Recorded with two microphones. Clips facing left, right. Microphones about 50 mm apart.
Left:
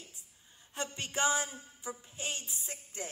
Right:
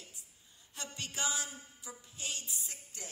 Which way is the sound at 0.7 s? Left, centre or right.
Left.